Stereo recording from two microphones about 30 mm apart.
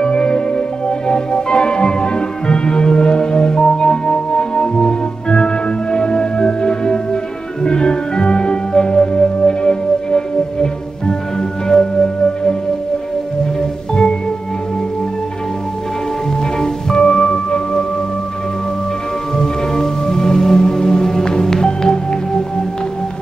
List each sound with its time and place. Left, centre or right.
0.0 s music: left
16.6 s music: left
19.3 s music: left